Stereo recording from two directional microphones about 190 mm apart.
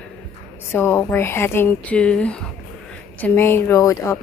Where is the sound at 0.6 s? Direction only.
10° left (ahead or behind).